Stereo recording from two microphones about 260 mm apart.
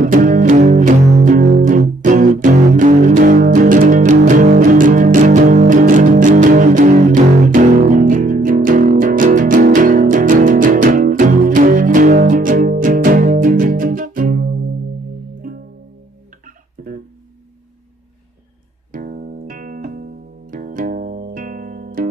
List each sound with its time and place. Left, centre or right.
0.0 s music: right
16.8 s guitar: right
18.9 s music: right